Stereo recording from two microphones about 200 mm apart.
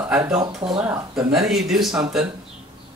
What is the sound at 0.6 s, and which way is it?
Speech, 25° right (ahead or behind).